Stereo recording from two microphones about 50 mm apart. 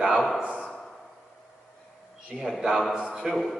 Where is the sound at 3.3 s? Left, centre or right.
Centre.